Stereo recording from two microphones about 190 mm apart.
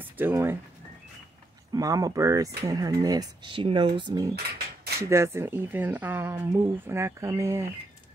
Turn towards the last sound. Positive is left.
turn(degrees=-15)  # may be behind; listen again after turning